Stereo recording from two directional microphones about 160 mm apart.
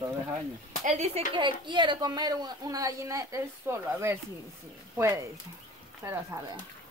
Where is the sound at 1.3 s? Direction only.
30° right (ahead or behind).